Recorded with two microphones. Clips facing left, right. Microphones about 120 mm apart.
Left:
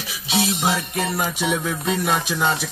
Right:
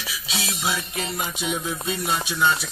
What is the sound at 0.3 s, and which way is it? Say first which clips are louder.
Music: left 7 dB; 65° left (ahead or behind).